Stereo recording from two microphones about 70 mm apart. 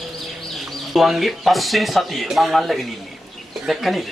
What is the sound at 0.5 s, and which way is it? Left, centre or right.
A man's voice, centre.